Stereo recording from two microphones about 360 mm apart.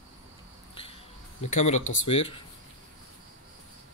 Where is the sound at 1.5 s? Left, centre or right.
Centre.